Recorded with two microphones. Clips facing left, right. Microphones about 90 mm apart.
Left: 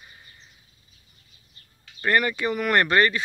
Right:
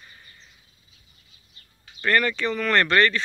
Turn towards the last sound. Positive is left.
turn(degrees=15)  # may be behind; listen again after turning